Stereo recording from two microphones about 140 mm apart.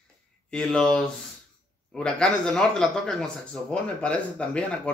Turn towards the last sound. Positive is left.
turn(degrees=10)  # may be behind; listen again after turning